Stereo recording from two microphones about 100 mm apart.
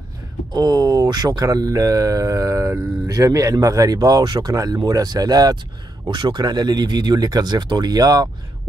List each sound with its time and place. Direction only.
0.5 s speech: 40° right (ahead or behind)